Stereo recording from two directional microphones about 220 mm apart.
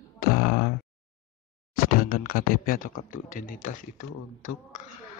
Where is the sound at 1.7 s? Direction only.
40° left (ahead or behind).